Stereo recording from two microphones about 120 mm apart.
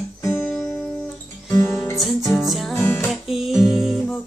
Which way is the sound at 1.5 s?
20° left (ahead or behind).